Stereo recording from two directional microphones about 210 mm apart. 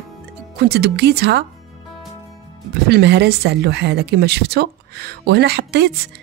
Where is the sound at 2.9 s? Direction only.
50° right (ahead or behind).